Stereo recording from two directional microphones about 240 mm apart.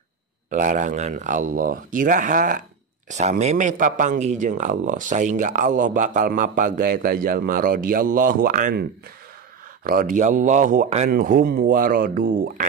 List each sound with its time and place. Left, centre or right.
0.5 s speech: right
9.8 s speech: right